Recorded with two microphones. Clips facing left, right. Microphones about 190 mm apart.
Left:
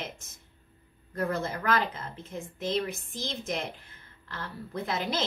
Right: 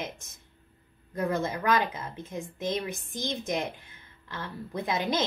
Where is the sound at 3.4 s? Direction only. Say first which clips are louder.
Right 3 dB; 15° right (ahead or behind).